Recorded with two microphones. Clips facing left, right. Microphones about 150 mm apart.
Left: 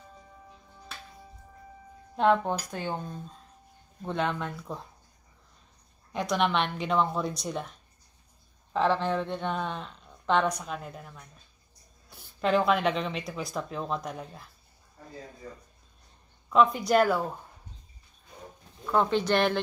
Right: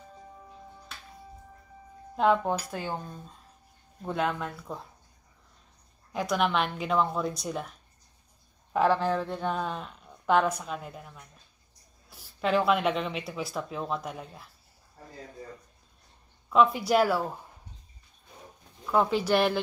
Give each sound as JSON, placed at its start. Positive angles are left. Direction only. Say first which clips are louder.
{"t": 2.1, "sound": "speech", "louder": "even", "side_deg": -5}
{"t": 6.1, "sound": "speech", "louder": "even", "side_deg": -5}
{"t": 8.7, "sound": "speech", "louder": "right 1 dB", "side_deg": -5}
{"t": 16.4, "sound": "speech", "louder": "even", "side_deg": -5}
{"t": 18.9, "sound": "speech", "louder": "even", "side_deg": -5}